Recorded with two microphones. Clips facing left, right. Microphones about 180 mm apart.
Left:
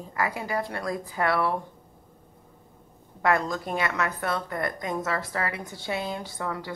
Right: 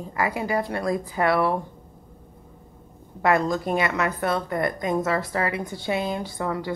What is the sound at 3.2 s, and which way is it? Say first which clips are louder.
A woman's voice: right 4 dB; 20° right (ahead or behind).